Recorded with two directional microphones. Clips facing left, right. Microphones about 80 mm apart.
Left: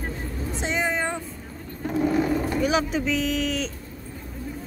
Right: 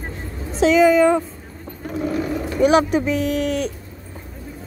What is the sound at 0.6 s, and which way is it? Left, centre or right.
Speech, right.